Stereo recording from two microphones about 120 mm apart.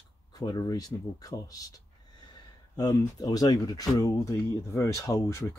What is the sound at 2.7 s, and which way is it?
Speech, 30° left (ahead or behind).